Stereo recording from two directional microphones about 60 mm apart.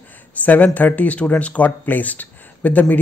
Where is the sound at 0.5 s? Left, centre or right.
Left.